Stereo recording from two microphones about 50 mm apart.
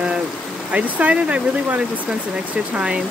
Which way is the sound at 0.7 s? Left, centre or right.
Right.